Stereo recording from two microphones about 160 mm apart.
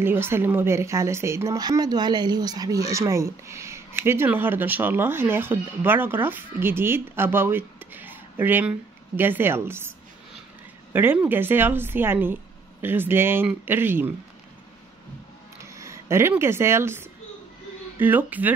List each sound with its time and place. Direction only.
0.0 s speech: 15° right (ahead or behind)
15.6 s speech: 20° right (ahead or behind)